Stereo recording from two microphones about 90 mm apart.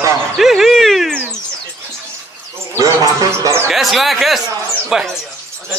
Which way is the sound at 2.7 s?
40° right (ahead or behind).